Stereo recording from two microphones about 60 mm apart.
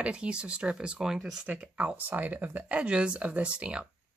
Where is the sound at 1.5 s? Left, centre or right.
Right.